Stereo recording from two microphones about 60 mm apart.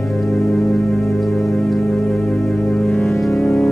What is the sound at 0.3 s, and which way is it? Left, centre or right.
Music, left.